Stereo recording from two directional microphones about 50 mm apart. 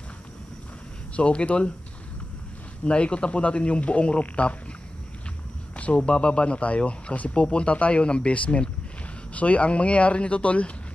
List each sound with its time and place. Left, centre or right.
1.1 s speech: left
2.8 s speech: left
5.8 s speech: left